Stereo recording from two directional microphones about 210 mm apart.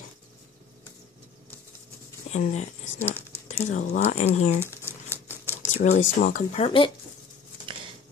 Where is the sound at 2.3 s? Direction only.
30° left (ahead or behind).